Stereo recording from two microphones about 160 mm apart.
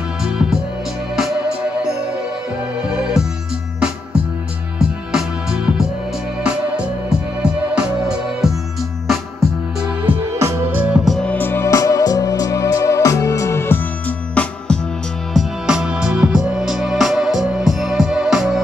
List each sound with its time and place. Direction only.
0.2 s music: 5° right (ahead or behind)
2.9 s music: 5° right (ahead or behind)
4.7 s music: 5° right (ahead or behind)
9.8 s music: 5° right (ahead or behind)
15.3 s music: 5° right (ahead or behind)